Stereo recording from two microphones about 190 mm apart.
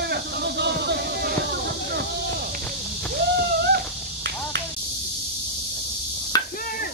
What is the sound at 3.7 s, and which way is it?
Finger snapping, 60° right (ahead or behind).